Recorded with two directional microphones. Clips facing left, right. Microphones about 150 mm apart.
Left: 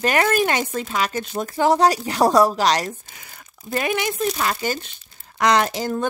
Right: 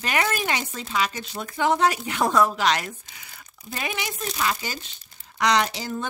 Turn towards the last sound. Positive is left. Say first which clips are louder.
# left 4 dB
turn(degrees=50)  # may be behind; listen again after turning